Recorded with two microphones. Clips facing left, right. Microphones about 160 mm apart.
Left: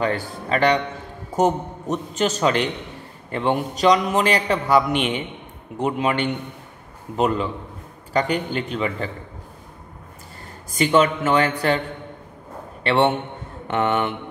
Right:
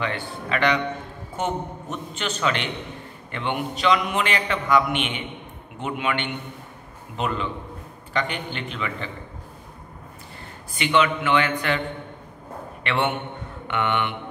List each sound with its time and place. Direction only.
0.0 s a man's voice: 40° left (ahead or behind)
10.7 s a man's voice: 40° left (ahead or behind)
12.8 s a man's voice: 35° left (ahead or behind)